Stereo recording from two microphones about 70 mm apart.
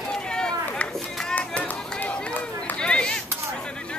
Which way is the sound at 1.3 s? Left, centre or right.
Left.